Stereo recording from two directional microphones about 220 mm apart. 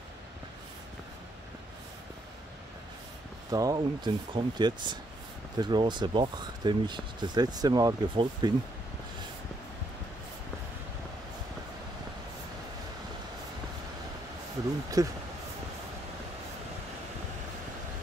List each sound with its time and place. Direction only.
3.4 s speech: 15° right (ahead or behind)
15.0 s speech: 15° right (ahead or behind)